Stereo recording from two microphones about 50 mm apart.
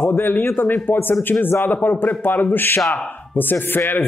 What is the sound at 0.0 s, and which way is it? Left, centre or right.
A man's voice, left.